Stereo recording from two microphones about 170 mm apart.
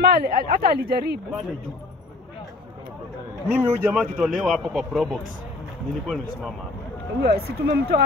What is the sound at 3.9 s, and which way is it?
A man's voice, centre (ahead or behind).